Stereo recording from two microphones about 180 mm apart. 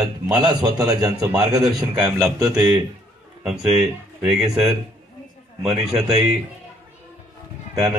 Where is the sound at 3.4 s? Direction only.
5° right (ahead or behind).